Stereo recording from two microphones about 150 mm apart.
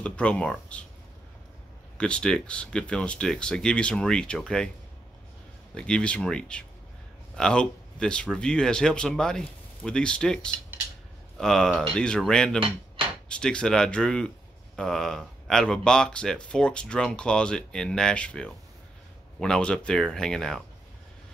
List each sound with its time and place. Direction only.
0.0 s speech: 5° left (ahead or behind)
2.0 s speech: 5° left (ahead or behind)
5.8 s speech: 5° left (ahead or behind)
12.5 s cutlery: 35° right (ahead or behind)
13.3 s speech: 5° left (ahead or behind)